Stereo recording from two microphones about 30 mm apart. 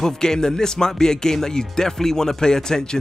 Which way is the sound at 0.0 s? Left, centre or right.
Centre.